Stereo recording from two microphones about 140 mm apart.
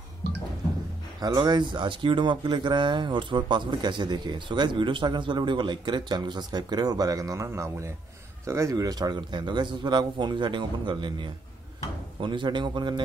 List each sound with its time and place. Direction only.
1.2 s speech: 30° right (ahead or behind)